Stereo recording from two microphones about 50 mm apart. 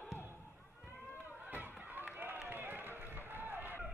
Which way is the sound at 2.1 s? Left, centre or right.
Right.